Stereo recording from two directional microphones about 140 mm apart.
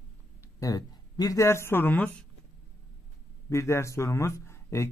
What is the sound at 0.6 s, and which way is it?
Speech, 25° left (ahead or behind).